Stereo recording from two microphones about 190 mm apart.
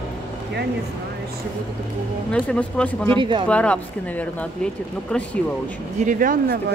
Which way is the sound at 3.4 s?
5° left (ahead or behind).